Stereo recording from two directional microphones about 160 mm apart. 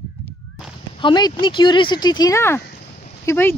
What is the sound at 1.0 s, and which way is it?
Speech, 30° left (ahead or behind).